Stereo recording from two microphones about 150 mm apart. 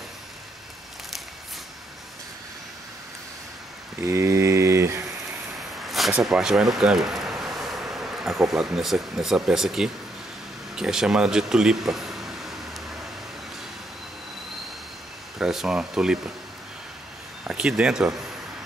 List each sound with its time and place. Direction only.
4.0 s mantra: 20° right (ahead or behind)
5.9 s a sound: centre (ahead or behind)
6.2 s speech: 5° right (ahead or behind)
15.3 s speech: 5° right (ahead or behind)
17.5 s speech: 5° right (ahead or behind)